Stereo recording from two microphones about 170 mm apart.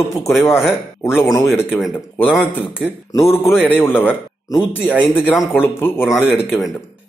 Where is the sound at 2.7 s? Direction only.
10° left (ahead or behind).